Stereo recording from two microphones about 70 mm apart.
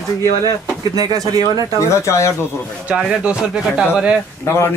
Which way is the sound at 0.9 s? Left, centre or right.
Right.